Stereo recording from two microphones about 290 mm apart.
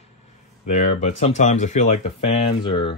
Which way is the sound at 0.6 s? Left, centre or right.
Left.